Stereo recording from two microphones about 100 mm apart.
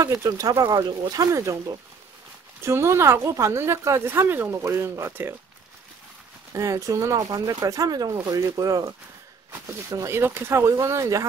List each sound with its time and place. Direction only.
0.0 s speech: 35° right (ahead or behind)
6.5 s speech: 30° right (ahead or behind)